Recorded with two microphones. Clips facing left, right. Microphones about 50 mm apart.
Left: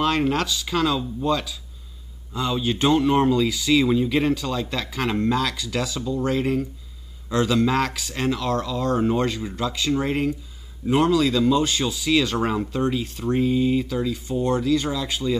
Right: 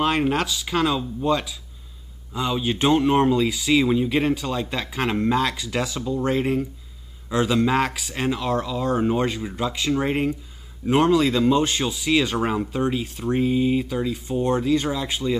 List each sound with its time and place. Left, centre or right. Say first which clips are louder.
0.0 s speech: even; centre
12.4 s speech: even; centre